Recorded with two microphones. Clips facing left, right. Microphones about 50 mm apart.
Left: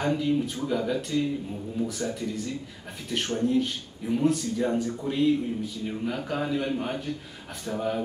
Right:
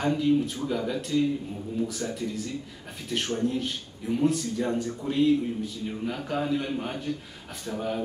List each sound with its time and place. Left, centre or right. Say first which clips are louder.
0.0 s a man's voice: right 2 dB; centre